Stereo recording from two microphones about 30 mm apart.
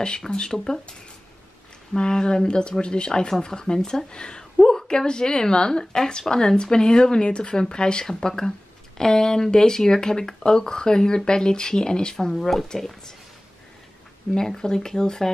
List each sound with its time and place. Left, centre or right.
0.5 s speech: left
2.0 s speech: left
12.3 s speech: centre
14.3 s speech: centre